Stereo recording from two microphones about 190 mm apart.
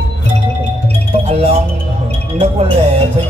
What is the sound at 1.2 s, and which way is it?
Music, 30° right (ahead or behind).